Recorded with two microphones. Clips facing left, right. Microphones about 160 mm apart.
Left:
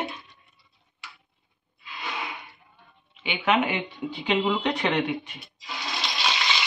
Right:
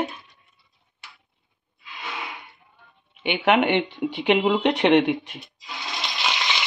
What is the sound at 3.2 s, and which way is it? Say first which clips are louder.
Speech: right 4 dB; 60° right (ahead or behind).